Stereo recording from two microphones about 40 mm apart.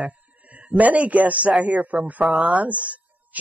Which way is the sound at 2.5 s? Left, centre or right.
Right.